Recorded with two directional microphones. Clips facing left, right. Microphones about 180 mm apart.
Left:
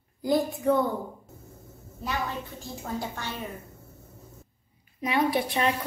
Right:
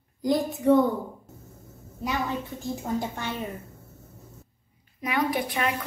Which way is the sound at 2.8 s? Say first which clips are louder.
Right 2 dB; 20° right (ahead or behind).